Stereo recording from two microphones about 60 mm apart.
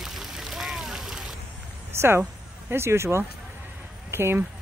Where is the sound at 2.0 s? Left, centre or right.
Right.